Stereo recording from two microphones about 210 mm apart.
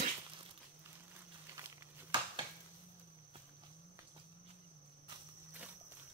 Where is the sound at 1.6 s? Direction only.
20° right (ahead or behind).